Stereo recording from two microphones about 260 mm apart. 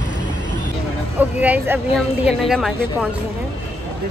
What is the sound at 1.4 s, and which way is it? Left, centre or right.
A woman's voice, centre.